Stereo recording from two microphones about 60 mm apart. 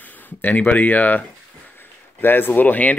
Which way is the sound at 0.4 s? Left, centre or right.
Left.